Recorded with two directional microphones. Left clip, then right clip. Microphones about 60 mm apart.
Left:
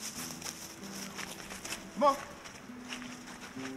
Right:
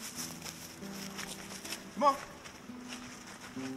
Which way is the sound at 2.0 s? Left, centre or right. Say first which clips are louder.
Left 1 dB; right.